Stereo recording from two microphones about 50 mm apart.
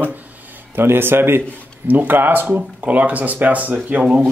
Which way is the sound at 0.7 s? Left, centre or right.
Right.